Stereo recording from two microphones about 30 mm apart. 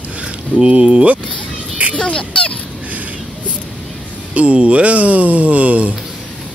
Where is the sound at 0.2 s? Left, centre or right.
Right.